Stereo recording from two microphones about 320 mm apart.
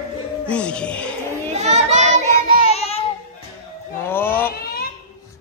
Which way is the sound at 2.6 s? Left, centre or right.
Centre.